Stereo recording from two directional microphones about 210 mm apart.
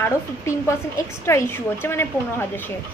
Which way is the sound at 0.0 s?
15° left (ahead or behind).